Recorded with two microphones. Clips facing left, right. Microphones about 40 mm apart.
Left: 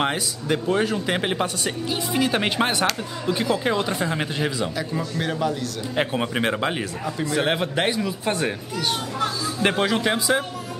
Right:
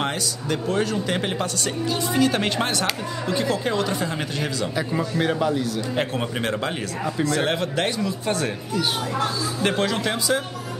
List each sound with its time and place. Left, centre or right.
0.0 s speech: centre
4.7 s speech: centre
5.9 s speech: centre
9.6 s speech: centre